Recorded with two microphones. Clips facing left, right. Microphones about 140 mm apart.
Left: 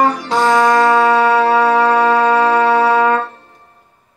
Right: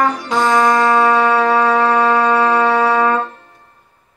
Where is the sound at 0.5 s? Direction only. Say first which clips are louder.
Left 2 dB; 45° left (ahead or behind).